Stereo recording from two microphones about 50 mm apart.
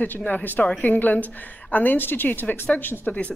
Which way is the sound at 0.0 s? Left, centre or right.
Left.